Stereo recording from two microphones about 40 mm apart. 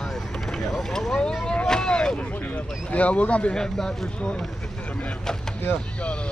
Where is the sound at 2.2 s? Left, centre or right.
Left.